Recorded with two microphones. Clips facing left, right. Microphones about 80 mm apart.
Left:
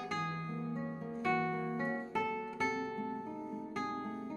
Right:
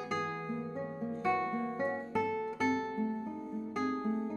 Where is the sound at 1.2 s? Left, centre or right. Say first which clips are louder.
Right 1 dB; centre.